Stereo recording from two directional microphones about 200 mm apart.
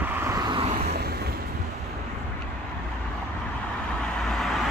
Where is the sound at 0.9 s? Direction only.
50° right (ahead or behind).